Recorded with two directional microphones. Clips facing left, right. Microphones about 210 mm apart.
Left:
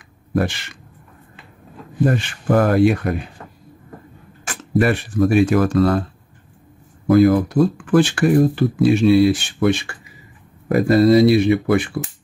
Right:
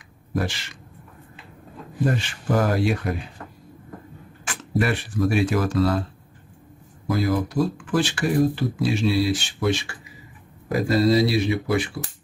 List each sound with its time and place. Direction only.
0.3 s speech: 60° left (ahead or behind)
2.1 s speech: 55° left (ahead or behind)
4.5 s speech: 50° left (ahead or behind)
7.1 s speech: 55° left (ahead or behind)